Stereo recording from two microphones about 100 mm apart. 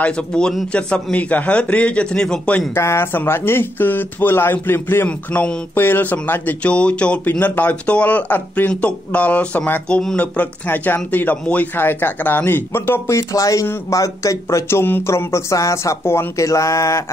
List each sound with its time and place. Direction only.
0.0 s a man's voice: 10° left (ahead or behind)
2.7 s speech: 25° left (ahead or behind)